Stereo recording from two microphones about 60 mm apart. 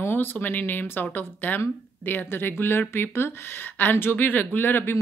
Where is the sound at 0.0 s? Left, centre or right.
Left.